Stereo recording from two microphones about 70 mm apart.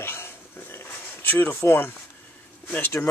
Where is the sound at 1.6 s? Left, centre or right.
Left.